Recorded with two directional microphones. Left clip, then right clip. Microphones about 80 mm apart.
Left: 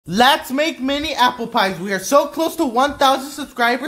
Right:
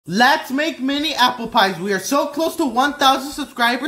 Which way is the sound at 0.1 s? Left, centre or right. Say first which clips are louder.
Left 1 dB; left.